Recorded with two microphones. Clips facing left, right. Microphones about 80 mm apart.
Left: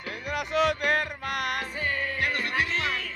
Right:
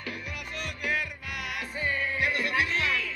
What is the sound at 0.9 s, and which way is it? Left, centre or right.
Music, left.